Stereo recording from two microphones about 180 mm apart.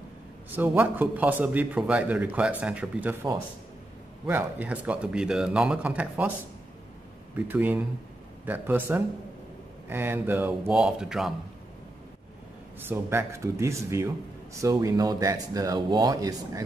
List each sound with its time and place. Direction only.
0.5 s a man's voice: 10° right (ahead or behind)
4.3 s a man's voice: 10° right (ahead or behind)
7.3 s a man's voice: 10° right (ahead or behind)
12.8 s a man's voice: 10° right (ahead or behind)